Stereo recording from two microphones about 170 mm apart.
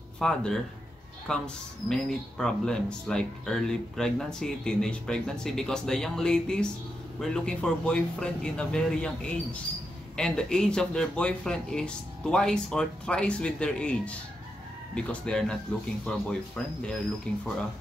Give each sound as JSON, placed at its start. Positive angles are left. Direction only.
{"t": 0.2, "sound": "speech", "side_deg": 5}